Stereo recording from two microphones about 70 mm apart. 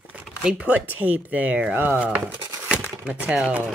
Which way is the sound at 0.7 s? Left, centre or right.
Right.